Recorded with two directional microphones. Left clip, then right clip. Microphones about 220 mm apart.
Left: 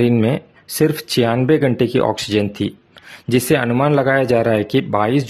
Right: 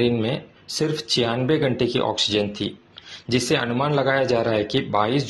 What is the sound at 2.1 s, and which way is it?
Speech, 75° left (ahead or behind).